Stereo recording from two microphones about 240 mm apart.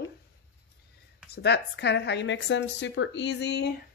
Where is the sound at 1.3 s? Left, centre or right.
Left.